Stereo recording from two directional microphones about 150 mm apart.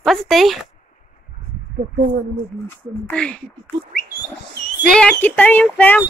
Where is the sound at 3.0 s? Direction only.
5° left (ahead or behind).